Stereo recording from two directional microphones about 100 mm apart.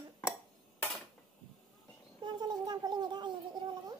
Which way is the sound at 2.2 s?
45° right (ahead or behind).